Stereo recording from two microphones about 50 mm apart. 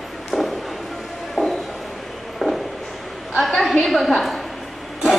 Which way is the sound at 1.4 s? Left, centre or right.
Left.